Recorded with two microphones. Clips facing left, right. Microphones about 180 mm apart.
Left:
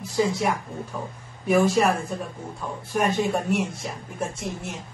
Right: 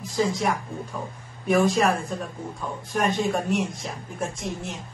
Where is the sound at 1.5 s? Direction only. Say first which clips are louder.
Left 1 dB; 10° left (ahead or behind).